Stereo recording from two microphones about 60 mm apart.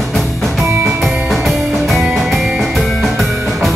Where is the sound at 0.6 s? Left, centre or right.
Right.